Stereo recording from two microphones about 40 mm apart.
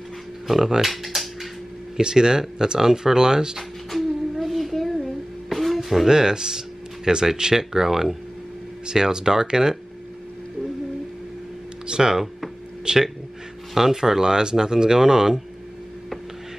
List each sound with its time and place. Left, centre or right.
0.5 s typewriter: centre
2.0 s speech: centre
3.9 s music: centre
6.0 s speech: centre
11.9 s speech: centre